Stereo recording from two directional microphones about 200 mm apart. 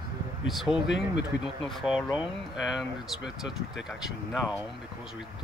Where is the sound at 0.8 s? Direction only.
60° left (ahead or behind).